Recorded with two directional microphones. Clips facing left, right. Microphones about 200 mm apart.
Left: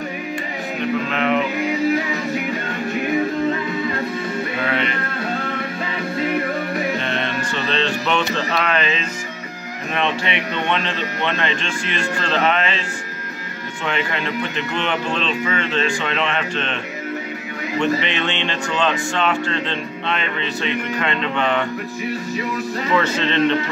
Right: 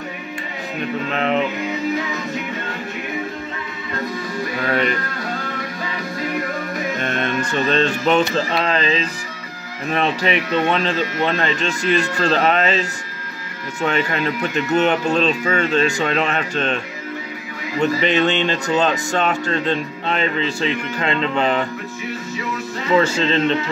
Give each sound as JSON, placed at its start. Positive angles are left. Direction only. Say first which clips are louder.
{"t": 4.6, "sound": "music", "louder": "right 5 dB", "side_deg": -45}
{"t": 7.0, "sound": "music", "louder": "right 2 dB", "side_deg": -45}
{"t": 9.9, "sound": "speech", "louder": "right 3 dB", "side_deg": -40}
{"t": 13.8, "sound": "speech", "louder": "right 4 dB", "side_deg": -40}
{"t": 17.7, "sound": "speech", "louder": "right 3 dB", "side_deg": -40}
{"t": 22.9, "sound": "speech", "louder": "right 3 dB", "side_deg": -30}